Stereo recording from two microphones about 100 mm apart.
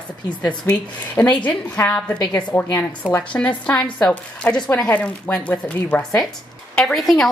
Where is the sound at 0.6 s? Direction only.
25° left (ahead or behind).